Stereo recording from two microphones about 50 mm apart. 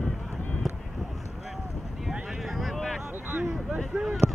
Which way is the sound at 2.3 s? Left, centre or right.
Centre.